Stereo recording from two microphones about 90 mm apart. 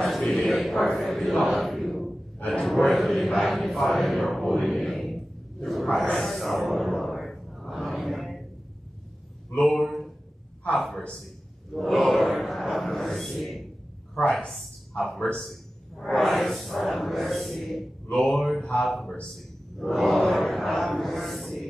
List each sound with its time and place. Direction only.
0.2 s speech: centre (ahead or behind)
9.6 s a woman's voice: centre (ahead or behind)